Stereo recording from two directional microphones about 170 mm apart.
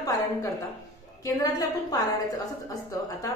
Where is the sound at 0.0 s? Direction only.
20° left (ahead or behind).